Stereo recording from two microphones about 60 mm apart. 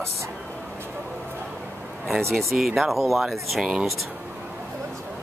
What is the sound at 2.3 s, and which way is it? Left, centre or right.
Speech, centre.